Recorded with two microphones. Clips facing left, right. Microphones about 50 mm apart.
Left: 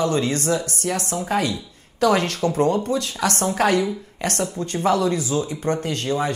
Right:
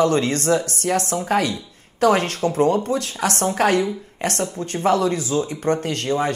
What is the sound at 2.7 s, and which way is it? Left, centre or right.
Speech, right.